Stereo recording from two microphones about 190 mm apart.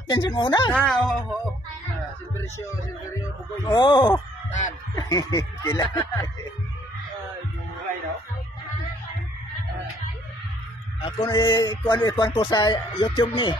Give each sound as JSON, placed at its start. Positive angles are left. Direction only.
{"t": 0.1, "sound": "speech", "side_deg": 25}
{"t": 0.7, "sound": "speech", "side_deg": 0}
{"t": 3.6, "sound": "speech", "side_deg": 20}
{"t": 4.5, "sound": "a sound", "side_deg": 40}
{"t": 4.9, "sound": "speech", "side_deg": 20}
{"t": 11.0, "sound": "speech", "side_deg": 25}